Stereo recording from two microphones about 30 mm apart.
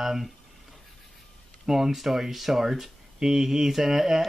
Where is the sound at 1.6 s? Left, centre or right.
Centre.